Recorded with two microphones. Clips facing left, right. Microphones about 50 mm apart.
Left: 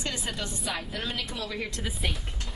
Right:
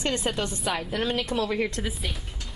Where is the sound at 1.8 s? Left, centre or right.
Centre.